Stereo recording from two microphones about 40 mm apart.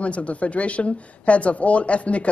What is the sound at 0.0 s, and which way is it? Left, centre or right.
Speech, left.